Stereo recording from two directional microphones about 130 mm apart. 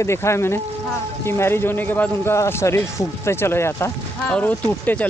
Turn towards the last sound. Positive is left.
turn(degrees=10)  # may be behind; listen again after turning